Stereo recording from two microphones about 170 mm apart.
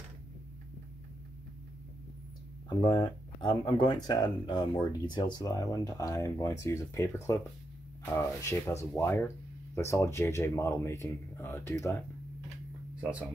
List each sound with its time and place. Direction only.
2.9 s speech: 25° left (ahead or behind)